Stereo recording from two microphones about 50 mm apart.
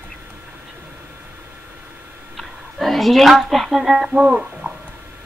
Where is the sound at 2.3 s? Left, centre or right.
Centre.